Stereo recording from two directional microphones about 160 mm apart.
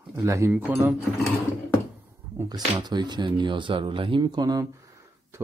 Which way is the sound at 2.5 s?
25° right (ahead or behind).